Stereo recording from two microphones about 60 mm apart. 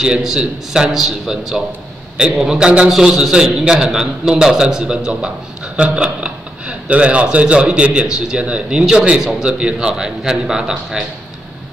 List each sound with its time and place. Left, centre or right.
0.0 s a man's voice: centre